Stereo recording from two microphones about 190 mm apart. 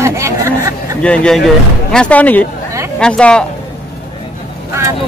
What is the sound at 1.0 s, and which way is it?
Speech, 5° left (ahead or behind).